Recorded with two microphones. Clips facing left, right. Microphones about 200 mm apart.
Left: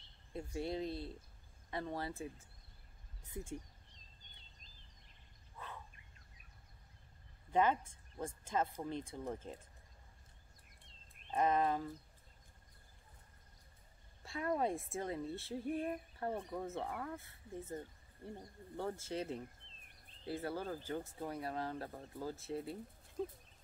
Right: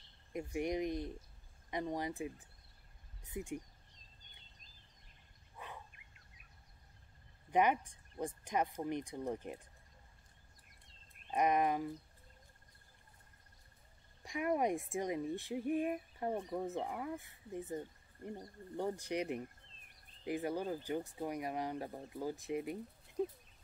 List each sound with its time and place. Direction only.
0.3 s speech: 15° right (ahead or behind)
5.6 s a sound: 15° right (ahead or behind)
7.5 s speech: 15° right (ahead or behind)
11.2 s speech: 15° right (ahead or behind)
14.2 s speech: 15° right (ahead or behind)